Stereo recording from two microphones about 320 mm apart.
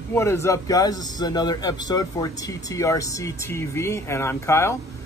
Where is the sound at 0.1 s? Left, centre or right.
Centre.